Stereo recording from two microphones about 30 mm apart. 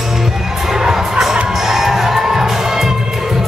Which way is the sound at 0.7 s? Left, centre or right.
Centre.